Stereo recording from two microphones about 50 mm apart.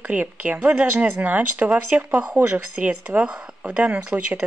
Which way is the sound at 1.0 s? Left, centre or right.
Right.